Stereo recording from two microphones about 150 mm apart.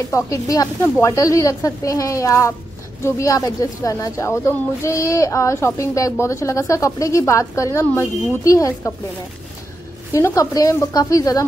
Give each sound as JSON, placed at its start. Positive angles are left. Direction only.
{"t": 0.1, "sound": "speech", "side_deg": 20}
{"t": 10.1, "sound": "speech", "side_deg": 20}